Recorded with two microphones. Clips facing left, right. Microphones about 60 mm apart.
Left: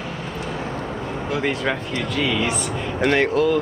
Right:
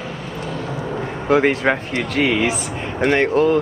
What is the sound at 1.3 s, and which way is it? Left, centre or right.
Speech, right.